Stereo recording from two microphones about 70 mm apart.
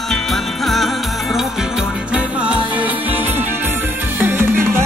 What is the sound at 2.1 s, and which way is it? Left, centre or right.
Music, centre.